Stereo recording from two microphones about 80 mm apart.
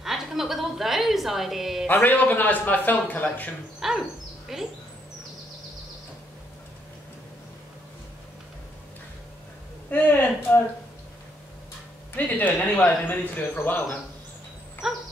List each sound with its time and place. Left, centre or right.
0.0 s a sound: centre
1.9 s speech: left
3.8 s dog: centre
4.5 s speech: centre
9.8 s speech: left
12.2 s speech: left
14.8 s speech: centre